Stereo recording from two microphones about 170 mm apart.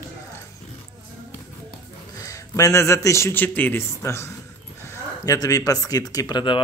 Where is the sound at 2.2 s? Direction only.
20° left (ahead or behind).